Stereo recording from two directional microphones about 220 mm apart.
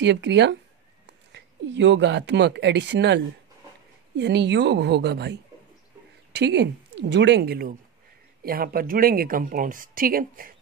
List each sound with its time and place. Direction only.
0.0 s a woman's voice: 55° right (ahead or behind)
4.2 s a woman's voice: 50° right (ahead or behind)